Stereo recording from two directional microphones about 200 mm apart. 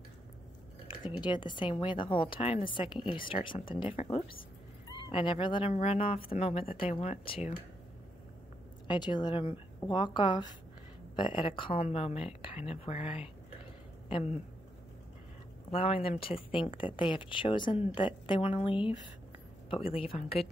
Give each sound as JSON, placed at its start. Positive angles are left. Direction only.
{"t": 1.2, "sound": "speech", "side_deg": 20}
{"t": 8.8, "sound": "speech", "side_deg": 20}
{"t": 15.7, "sound": "speech", "side_deg": 30}